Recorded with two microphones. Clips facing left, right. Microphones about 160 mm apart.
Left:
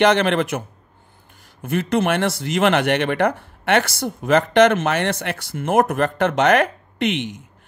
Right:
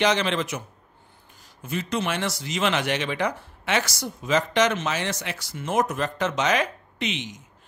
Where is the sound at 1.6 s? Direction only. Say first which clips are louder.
Left 8 dB; 55° left (ahead or behind).